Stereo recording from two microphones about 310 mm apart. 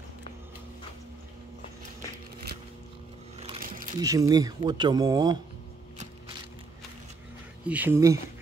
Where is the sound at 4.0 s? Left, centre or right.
Centre.